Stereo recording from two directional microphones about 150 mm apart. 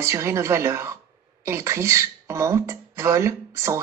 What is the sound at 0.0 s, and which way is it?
Speech, 20° right (ahead or behind).